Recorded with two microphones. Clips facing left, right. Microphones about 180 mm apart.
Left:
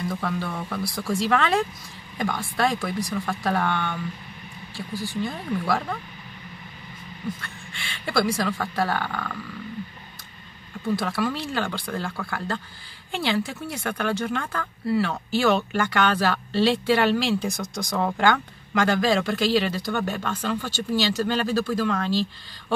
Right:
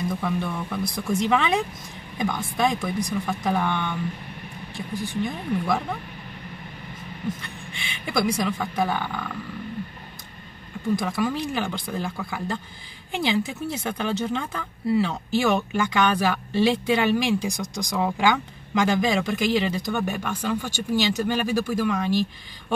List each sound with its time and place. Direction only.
0.1 s speech: 15° right (ahead or behind)
7.4 s speech: 20° right (ahead or behind)
11.0 s speech: 15° right (ahead or behind)